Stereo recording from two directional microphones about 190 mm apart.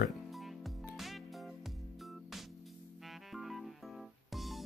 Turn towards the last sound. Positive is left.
turn(degrees=0)  # may be behind; listen again after turning